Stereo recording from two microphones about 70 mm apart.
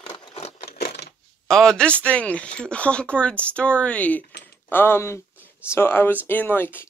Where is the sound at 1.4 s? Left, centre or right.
Centre.